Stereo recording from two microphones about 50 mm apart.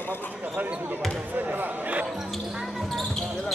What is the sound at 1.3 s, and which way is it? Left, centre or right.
Basketball bounce, right.